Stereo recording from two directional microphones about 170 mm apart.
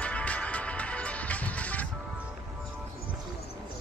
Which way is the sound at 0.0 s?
5° left (ahead or behind).